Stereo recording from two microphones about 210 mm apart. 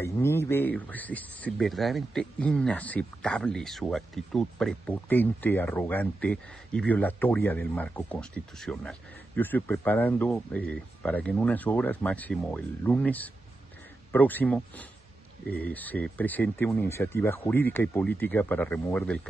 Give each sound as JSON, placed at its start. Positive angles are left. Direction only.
{"t": 0.0, "sound": "speech", "side_deg": 10}